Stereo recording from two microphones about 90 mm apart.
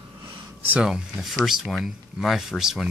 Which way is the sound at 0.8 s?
5° right (ahead or behind).